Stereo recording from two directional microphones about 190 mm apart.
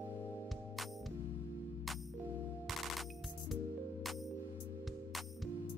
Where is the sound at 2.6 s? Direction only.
Centre (ahead or behind).